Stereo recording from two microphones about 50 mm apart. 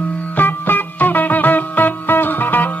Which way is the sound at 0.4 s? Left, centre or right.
Left.